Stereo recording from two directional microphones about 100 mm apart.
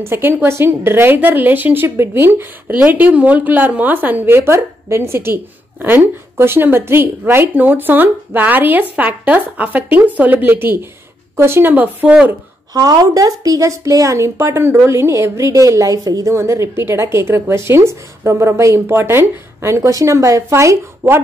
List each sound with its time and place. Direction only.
0.0 s speech: 25° right (ahead or behind)
12.7 s speech: 40° right (ahead or behind)